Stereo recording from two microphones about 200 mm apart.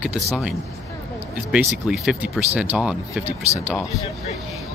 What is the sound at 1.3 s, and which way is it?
Speech, 5° right (ahead or behind).